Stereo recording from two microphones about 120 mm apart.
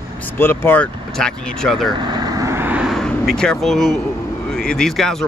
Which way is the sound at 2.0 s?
35° right (ahead or behind).